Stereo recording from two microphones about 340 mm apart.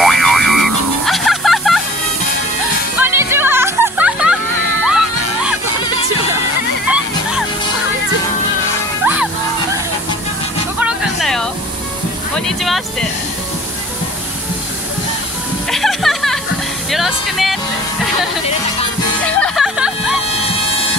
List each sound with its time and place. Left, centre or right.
0.0 s music: centre
3.0 s music: centre
9.0 s music: centre
10.8 s music: centre
12.4 s a sound: centre
15.7 s music: centre
19.2 s music: centre